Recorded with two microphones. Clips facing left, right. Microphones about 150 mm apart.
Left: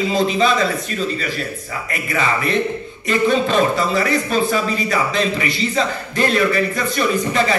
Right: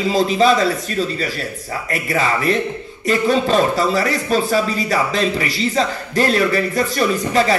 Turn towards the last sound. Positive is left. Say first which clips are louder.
# right 1 dB
turn(degrees=-40)  # may be behind; listen again after turning